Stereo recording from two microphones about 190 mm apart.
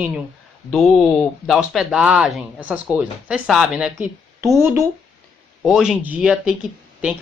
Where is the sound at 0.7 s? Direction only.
Centre (ahead or behind).